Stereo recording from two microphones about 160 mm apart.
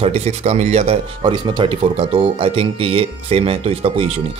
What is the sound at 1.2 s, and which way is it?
A man's voice, 30° right (ahead or behind).